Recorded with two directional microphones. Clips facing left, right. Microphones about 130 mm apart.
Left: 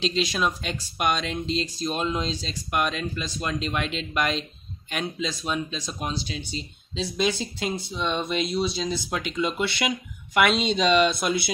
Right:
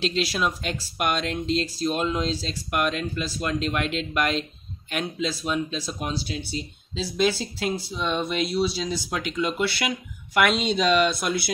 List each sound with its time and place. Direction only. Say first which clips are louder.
0.0 s speech: even; 5° right (ahead or behind)